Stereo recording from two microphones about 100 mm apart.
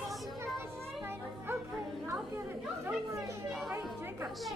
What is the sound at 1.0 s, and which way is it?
Music, 20° right (ahead or behind).